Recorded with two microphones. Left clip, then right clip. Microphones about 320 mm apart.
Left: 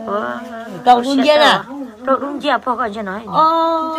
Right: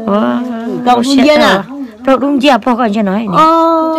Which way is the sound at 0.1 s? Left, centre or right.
Right.